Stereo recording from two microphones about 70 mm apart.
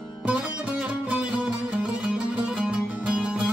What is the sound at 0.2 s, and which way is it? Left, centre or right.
Music, centre.